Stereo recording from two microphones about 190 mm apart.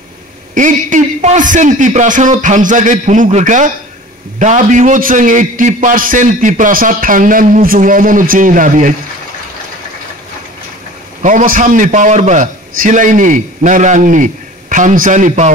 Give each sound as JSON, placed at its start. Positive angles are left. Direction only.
{"t": 0.6, "sound": "a man's voice", "side_deg": -40}
{"t": 11.2, "sound": "a man's voice", "side_deg": -45}